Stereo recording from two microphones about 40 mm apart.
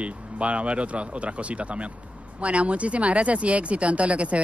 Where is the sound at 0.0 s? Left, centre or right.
Right.